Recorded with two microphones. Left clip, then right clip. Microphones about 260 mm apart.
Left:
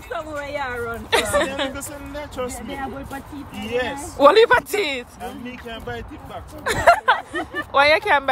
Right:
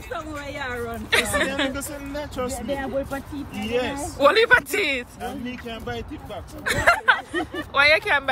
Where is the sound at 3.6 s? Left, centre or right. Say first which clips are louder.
Left 1 dB; centre.